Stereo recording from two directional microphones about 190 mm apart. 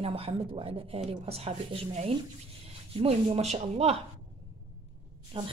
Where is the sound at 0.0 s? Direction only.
30° right (ahead or behind).